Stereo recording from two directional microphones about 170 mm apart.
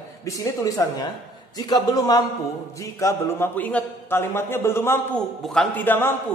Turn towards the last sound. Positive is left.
turn(degrees=10)  # may be behind; listen again after turning